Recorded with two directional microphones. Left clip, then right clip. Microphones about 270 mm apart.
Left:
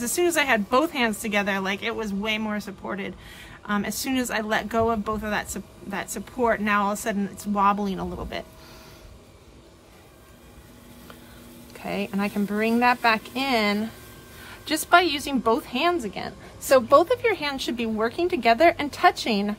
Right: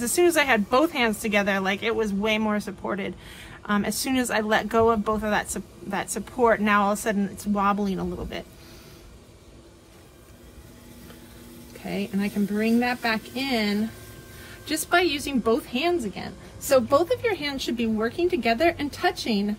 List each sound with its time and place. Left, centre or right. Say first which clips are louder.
0.0 s speech: right 2 dB; centre
11.8 s a woman's voice: left 2 dB; centre